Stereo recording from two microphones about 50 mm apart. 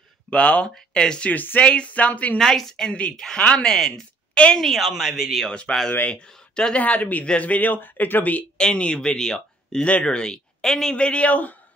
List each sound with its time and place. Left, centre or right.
0.3 s speech: left
1.3 s a man's voice: left
1.6 s speech: left
2.3 s speech: centre
4.3 s a sound: left
4.6 s speech: centre
5.5 s speech: centre
6.8 s a man's voice: left
8.5 s speech: centre
11.0 s speech: left